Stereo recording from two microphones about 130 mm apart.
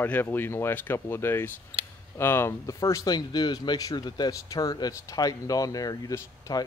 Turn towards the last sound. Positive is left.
turn(degrees=25)  # may be behind; listen again after turning